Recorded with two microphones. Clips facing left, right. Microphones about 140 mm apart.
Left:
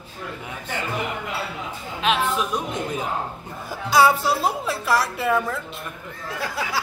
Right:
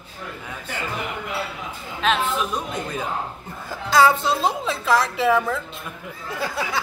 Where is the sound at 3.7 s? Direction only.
10° left (ahead or behind).